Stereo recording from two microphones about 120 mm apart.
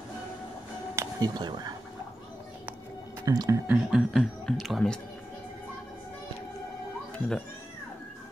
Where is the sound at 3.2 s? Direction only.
30° right (ahead or behind).